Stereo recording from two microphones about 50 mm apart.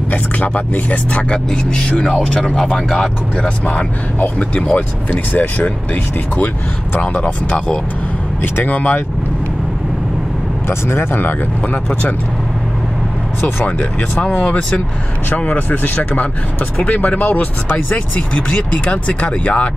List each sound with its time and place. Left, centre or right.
0.1 s speech: left; by 3.1 s centre
3.4 s speech: left
4.7 s speech: left
10.7 s speech: left
13.4 s speech: left
15.2 s speech: left